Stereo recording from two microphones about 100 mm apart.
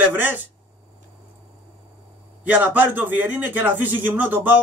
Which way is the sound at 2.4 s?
15° right (ahead or behind).